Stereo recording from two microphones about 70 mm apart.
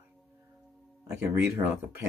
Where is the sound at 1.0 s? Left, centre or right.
Right.